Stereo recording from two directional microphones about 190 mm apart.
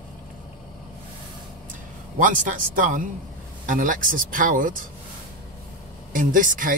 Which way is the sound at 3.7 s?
45° right (ahead or behind).